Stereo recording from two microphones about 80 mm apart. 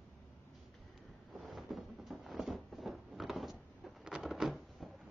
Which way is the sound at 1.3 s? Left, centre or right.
Centre.